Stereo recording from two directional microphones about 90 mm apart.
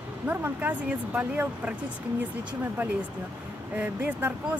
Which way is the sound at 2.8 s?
15° right (ahead or behind).